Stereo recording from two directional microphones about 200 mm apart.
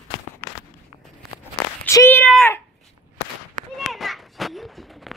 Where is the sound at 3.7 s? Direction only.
Centre (ahead or behind).